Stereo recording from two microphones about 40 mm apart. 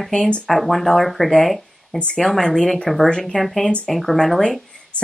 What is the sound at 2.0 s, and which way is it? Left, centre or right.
Speech, left.